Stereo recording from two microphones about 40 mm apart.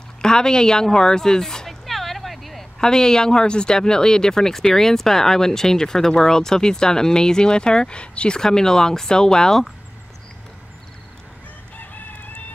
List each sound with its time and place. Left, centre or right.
0.2 s speech: centre
1.9 s vehicle: centre
2.8 s speech: centre
8.4 s speech: centre
11.7 s crowing: left